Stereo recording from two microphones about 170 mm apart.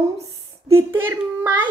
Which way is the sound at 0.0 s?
15° right (ahead or behind).